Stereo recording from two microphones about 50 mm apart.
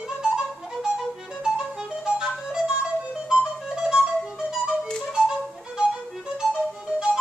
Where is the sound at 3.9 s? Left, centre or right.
Centre.